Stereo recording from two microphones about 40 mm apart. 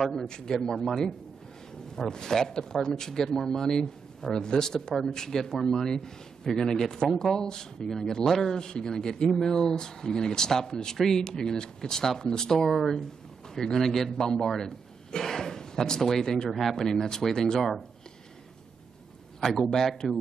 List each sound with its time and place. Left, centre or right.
0.0 s speech: centre
0.3 s a man's voice: centre
8.5 s a man's voice: centre
16.4 s speech: centre
16.7 s a man's voice: centre
19.7 s a man's voice: centre